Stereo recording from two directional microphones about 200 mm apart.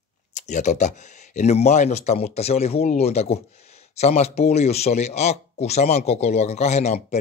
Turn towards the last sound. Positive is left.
turn(degrees=35)  # may be behind; listen again after turning